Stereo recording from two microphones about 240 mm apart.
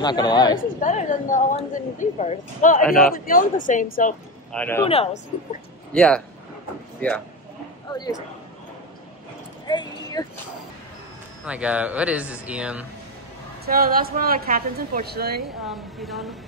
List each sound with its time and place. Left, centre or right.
0.0 s speech: centre
0.7 s speech: left
4.5 s speech: centre
4.8 s speech: left
5.9 s speech: centre
7.9 s speech: centre
9.7 s a sound: centre
11.4 s speech: centre
13.7 s a woman's voice: right
15.4 s speech: centre